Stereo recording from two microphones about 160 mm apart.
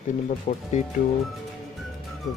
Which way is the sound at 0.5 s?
50° left (ahead or behind).